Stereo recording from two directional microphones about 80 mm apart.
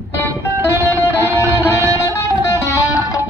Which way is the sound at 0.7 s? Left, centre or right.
Left.